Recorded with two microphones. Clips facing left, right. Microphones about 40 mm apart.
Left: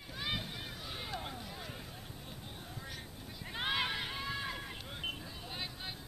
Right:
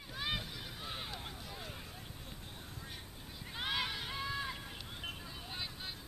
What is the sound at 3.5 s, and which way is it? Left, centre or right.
Horse, centre.